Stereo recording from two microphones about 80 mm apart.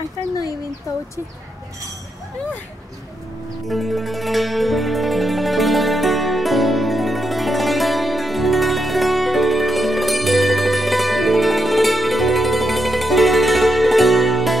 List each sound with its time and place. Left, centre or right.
0.9 s speech: left
3.6 s music: centre